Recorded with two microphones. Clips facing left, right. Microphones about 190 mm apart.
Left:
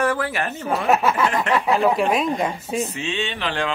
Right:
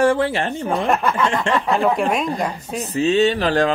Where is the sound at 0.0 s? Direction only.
30° right (ahead or behind).